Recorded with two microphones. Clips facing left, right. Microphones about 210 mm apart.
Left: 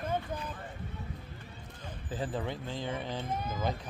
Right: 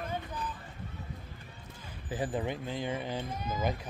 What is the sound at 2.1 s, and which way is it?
Speech, 15° right (ahead or behind).